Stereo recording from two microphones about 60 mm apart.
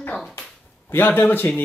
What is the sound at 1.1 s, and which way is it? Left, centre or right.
Speech, left.